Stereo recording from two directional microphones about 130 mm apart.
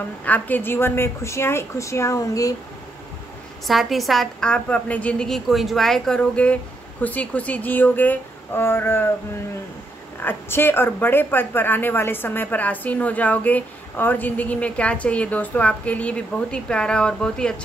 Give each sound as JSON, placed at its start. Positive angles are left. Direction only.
{"t": 0.2, "sound": "a woman's voice", "side_deg": 15}
{"t": 3.6, "sound": "speech", "side_deg": 0}
{"t": 10.2, "sound": "speech", "side_deg": 15}